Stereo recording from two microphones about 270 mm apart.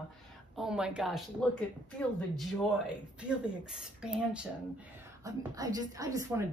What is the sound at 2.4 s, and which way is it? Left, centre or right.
Speech, centre.